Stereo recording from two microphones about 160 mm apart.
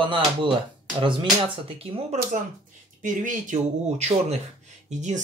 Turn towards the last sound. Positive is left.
turn(degrees=-45)  # may be behind; listen again after turning